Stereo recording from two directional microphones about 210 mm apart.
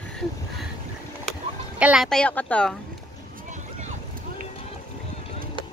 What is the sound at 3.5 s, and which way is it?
Boat, 35° right (ahead or behind).